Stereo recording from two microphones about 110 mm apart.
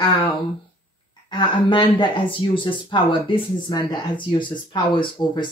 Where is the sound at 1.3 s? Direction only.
45° left (ahead or behind).